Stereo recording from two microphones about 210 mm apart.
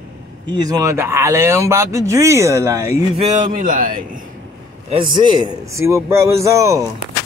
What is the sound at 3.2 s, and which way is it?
A man's voice, 40° right (ahead or behind).